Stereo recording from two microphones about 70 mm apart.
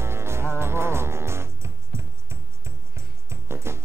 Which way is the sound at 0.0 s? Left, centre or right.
Right.